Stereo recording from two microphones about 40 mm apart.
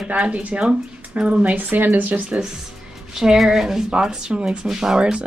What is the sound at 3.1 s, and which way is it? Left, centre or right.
Speech, centre.